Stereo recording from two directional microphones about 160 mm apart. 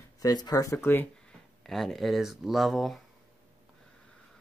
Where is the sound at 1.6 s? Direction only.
Centre (ahead or behind).